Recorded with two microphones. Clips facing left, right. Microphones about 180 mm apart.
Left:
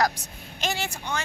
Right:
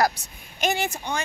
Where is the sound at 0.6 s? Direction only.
15° right (ahead or behind).